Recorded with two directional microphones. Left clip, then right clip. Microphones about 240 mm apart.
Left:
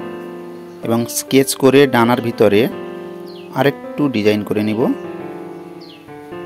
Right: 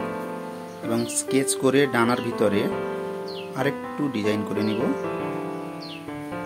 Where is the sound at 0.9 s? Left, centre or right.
Left.